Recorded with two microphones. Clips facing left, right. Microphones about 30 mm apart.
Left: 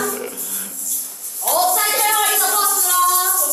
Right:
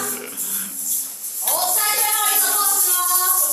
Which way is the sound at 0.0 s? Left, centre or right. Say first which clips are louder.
Left 6 dB; centre.